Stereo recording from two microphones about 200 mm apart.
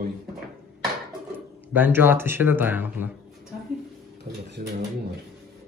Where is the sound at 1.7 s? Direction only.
10° right (ahead or behind).